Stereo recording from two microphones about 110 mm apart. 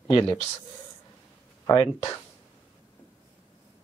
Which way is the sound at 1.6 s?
35° left (ahead or behind).